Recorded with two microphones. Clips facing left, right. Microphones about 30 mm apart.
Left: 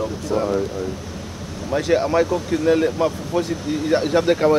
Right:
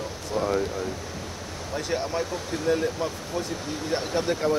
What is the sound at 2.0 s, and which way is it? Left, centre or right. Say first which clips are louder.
Speech: left 10 dB; left.